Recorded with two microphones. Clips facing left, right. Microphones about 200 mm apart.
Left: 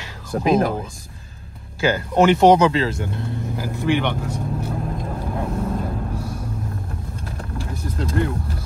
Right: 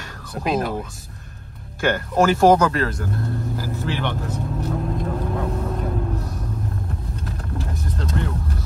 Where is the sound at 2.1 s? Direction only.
20° left (ahead or behind).